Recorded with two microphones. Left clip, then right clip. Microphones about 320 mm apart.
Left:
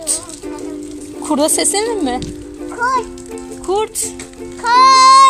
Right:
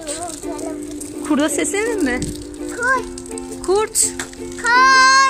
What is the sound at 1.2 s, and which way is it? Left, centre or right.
Music, centre.